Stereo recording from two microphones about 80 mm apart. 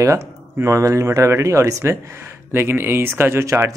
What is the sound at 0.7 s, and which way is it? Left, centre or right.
Speech, right.